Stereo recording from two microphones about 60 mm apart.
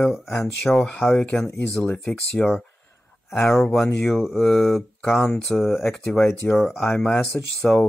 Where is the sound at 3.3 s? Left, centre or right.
Centre.